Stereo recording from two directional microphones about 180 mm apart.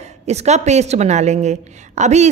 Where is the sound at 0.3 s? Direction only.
40° right (ahead or behind).